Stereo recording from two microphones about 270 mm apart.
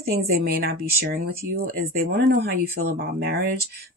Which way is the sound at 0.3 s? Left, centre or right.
Right.